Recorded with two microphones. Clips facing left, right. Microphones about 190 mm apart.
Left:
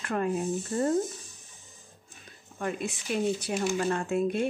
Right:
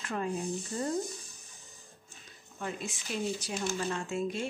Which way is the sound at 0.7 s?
60° left (ahead or behind).